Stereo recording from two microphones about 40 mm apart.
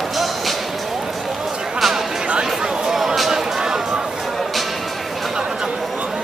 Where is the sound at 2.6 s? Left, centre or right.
Right.